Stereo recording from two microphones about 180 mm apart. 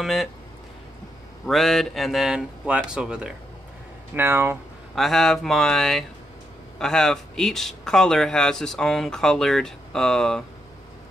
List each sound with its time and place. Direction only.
0.0 s speech: centre (ahead or behind)
1.4 s speech: centre (ahead or behind)
4.9 s speech: centre (ahead or behind)